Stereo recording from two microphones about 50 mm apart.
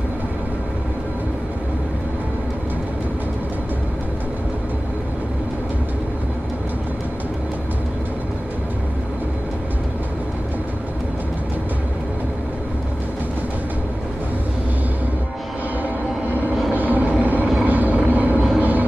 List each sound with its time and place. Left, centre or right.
16.3 s vehicle: right